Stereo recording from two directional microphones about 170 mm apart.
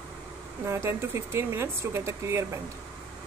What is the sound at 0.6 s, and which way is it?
Speech, 15° right (ahead or behind).